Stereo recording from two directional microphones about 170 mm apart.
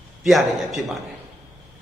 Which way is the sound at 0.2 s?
Centre (ahead or behind).